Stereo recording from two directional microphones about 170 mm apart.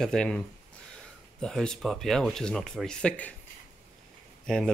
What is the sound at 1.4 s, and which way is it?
Speech, 5° left (ahead or behind).